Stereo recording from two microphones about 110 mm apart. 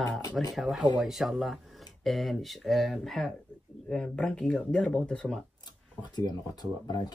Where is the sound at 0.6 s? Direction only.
Centre (ahead or behind).